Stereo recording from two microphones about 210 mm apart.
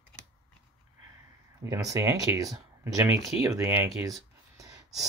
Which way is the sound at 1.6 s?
15° right (ahead or behind).